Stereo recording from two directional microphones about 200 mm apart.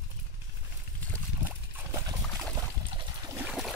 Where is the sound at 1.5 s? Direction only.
10° right (ahead or behind).